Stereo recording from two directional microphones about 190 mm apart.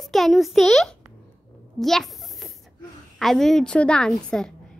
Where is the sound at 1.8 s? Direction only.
Centre (ahead or behind).